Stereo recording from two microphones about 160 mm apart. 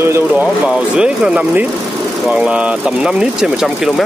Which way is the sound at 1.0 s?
5° right (ahead or behind).